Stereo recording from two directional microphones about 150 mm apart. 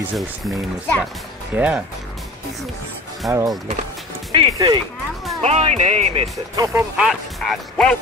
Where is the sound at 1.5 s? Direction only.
10° right (ahead or behind).